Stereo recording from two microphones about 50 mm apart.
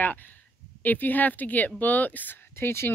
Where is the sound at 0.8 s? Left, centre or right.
Left.